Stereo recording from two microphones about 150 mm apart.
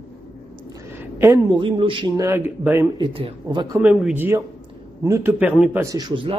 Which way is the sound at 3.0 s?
35° right (ahead or behind).